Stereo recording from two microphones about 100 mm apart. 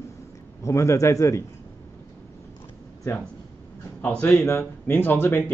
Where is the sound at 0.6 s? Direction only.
30° left (ahead or behind).